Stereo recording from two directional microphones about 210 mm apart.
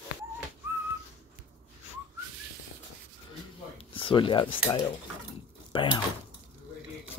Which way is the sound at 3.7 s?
25° left (ahead or behind).